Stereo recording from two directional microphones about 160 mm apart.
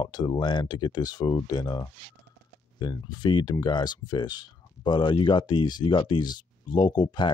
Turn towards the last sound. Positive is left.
turn(degrees=30)  # may be behind; listen again after turning